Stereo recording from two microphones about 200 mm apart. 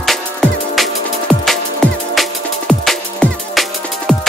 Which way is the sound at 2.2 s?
Centre (ahead or behind).